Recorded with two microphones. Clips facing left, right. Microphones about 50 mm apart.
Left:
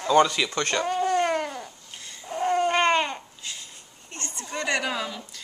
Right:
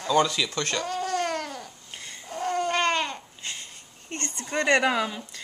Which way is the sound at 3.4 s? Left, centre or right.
Right.